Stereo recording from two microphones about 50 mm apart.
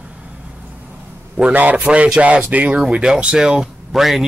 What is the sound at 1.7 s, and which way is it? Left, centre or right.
Speech, right.